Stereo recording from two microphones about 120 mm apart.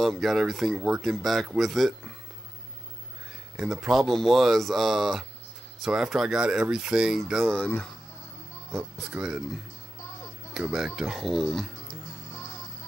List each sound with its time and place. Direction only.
0.0 s speech: centre (ahead or behind)
3.5 s speech: 5° right (ahead or behind)
8.7 s speech: 5° right (ahead or behind)
11.9 s music: 25° left (ahead or behind)